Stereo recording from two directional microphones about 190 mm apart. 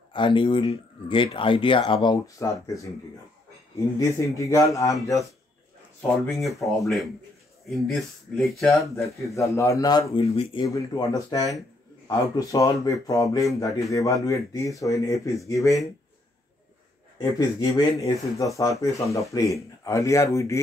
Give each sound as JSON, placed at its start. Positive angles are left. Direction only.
{"t": 0.1, "sound": "speech", "side_deg": 25}
{"t": 4.0, "sound": "speech", "side_deg": 15}
{"t": 6.4, "sound": "speech", "side_deg": 0}
{"t": 8.9, "sound": "speech", "side_deg": 15}
{"t": 17.2, "sound": "speech", "side_deg": 20}